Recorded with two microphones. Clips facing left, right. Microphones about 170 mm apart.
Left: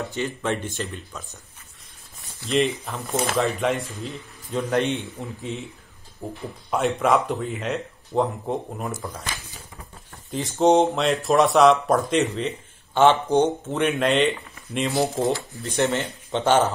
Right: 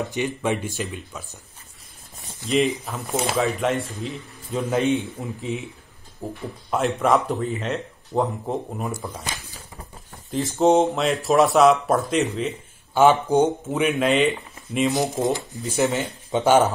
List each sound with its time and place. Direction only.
0.1 s speech: 15° right (ahead or behind)
2.4 s speech: centre (ahead or behind)
6.2 s speech: 5° right (ahead or behind)
10.3 s speech: centre (ahead or behind)
14.9 s speech: 20° right (ahead or behind)
15.6 s speech: 5° right (ahead or behind)